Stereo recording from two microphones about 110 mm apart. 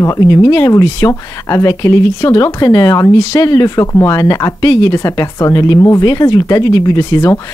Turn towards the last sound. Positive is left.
turn(degrees=30)  # may be behind; listen again after turning